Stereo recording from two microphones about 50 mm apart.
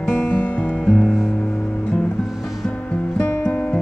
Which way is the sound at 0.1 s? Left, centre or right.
Left.